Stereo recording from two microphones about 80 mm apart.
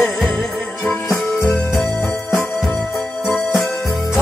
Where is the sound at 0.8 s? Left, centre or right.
Centre.